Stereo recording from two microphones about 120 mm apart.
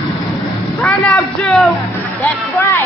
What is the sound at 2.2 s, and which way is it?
Speech, 20° left (ahead or behind).